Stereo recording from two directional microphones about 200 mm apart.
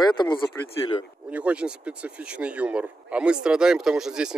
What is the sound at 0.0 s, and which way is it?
Speech, 20° left (ahead or behind).